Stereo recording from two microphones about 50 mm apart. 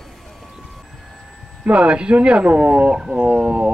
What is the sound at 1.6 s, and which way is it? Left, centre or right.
Speech, right.